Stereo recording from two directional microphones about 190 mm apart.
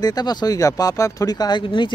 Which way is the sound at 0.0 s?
20° left (ahead or behind).